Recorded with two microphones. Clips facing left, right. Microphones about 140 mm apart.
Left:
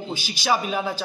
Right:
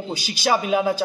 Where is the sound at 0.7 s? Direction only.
15° right (ahead or behind).